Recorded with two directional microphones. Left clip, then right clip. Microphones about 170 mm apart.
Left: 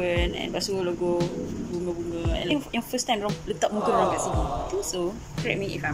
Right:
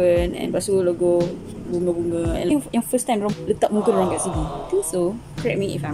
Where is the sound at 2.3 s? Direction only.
25° right (ahead or behind).